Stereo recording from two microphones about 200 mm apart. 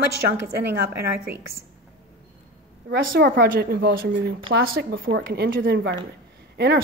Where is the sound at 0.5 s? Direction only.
50° right (ahead or behind).